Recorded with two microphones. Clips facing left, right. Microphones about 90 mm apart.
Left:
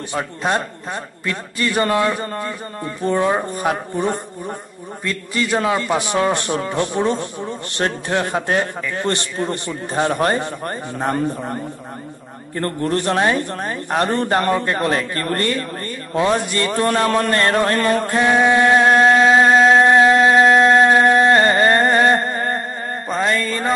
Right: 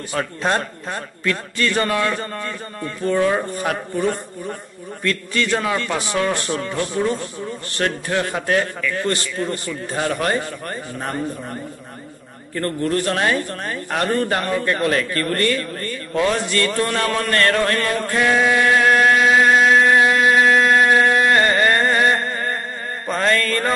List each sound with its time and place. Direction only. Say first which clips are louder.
0.4 s a man's voice: left 1 dB; 10° left (ahead or behind); by 22.6 s 30° left (ahead or behind)
23.0 s mantra: right 1 dB; 15° left (ahead or behind)